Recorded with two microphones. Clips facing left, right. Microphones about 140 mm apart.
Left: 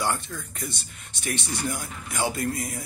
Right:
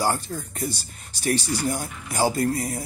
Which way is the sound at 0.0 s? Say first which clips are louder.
Right 3 dB; 35° right (ahead or behind).